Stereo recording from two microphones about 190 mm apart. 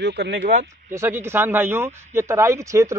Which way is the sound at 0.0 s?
60° right (ahead or behind).